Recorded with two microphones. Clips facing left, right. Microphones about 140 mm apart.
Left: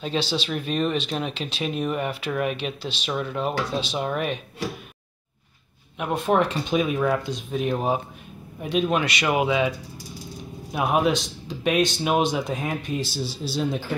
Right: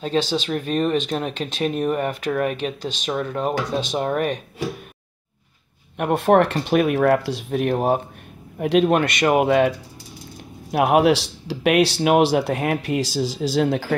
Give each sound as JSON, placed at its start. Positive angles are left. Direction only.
{"t": 0.0, "sound": "speech", "side_deg": -40}
{"t": 5.9, "sound": "speech", "side_deg": -60}
{"t": 10.7, "sound": "speech", "side_deg": -70}